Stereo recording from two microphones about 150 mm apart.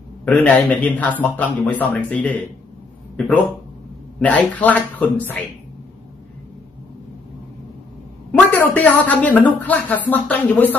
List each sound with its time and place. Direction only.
0.2 s speech: 10° left (ahead or behind)
4.2 s speech: 10° left (ahead or behind)
8.3 s speech: 10° left (ahead or behind)